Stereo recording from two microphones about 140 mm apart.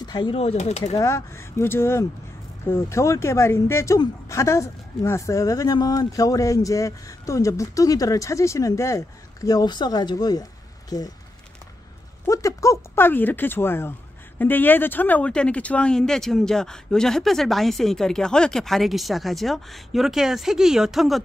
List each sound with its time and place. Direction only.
0.0 s speech: 30° left (ahead or behind)
0.4 s speech: 50° left (ahead or behind)
0.9 s speech: 20° left (ahead or behind)
12.3 s speech: 25° left (ahead or behind); by 21.2 s centre (ahead or behind)